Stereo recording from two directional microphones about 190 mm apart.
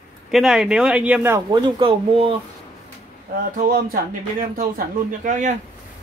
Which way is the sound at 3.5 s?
45° right (ahead or behind).